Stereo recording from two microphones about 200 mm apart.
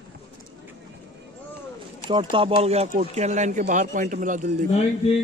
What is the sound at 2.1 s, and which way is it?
Speech, 25° right (ahead or behind).